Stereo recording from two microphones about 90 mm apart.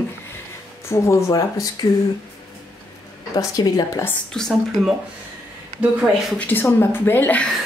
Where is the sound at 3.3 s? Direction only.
45° left (ahead or behind).